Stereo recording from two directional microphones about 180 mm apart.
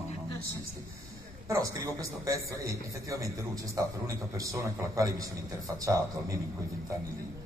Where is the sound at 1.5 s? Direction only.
20° right (ahead or behind).